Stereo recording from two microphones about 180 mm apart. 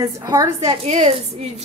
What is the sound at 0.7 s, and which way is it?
Speech, 35° right (ahead or behind).